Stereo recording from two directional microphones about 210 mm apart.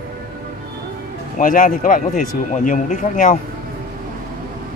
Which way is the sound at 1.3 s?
40° left (ahead or behind).